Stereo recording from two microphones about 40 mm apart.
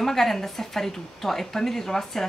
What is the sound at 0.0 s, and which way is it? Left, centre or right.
A woman's voice, centre.